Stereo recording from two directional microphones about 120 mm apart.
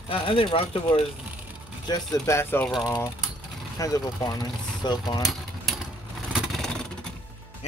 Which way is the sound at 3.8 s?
30° left (ahead or behind).